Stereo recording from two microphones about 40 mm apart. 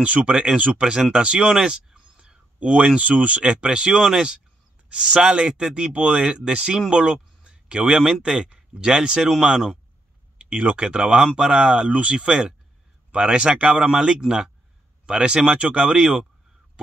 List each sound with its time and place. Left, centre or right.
0.0 s speech: right
1.5 s a sound: centre
3.0 s speech: right; by 9.8 s centre
10.5 s speech: right
10.8 s speech: right